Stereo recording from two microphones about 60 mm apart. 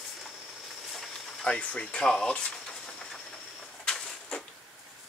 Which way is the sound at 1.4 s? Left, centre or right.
Left.